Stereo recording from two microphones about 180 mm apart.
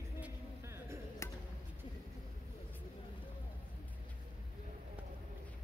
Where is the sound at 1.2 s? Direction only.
15° left (ahead or behind).